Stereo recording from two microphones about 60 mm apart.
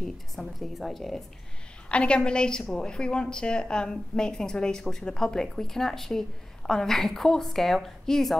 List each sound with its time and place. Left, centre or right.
0.4 s a woman's voice: centre
1.9 s a woman's voice: centre